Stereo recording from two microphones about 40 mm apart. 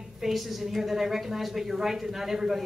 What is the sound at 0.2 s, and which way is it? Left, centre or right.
A woman's voice, centre.